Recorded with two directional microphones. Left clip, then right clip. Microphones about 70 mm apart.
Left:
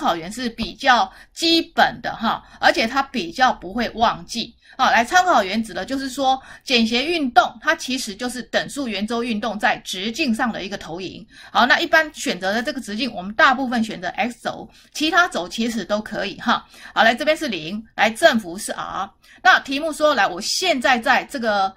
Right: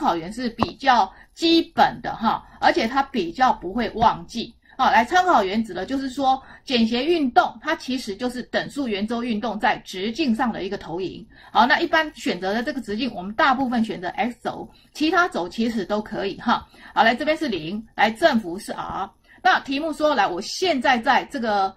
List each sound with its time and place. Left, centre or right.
0.0 s a woman's voice: left